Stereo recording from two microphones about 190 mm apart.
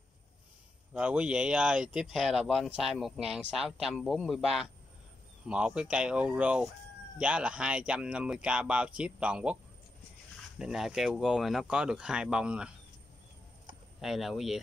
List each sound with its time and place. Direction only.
0.9 s speech: 5° right (ahead or behind)
10.6 s speech: 5° right (ahead or behind)
14.0 s speech: centre (ahead or behind)